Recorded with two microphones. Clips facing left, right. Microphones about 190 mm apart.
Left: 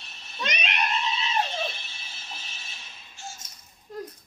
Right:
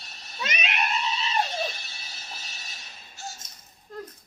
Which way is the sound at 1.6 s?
40° right (ahead or behind).